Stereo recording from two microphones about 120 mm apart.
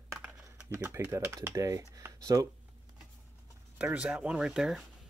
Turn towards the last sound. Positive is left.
turn(degrees=-5)  # may be behind; listen again after turning